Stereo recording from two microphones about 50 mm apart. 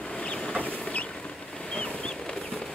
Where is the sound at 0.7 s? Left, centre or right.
Left.